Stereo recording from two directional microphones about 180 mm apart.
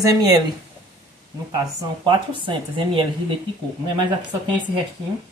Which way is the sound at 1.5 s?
25° right (ahead or behind).